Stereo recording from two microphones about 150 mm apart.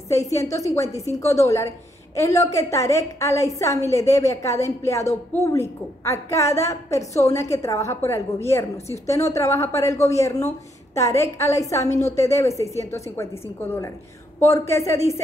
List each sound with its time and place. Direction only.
0.1 s a woman's voice: 20° left (ahead or behind)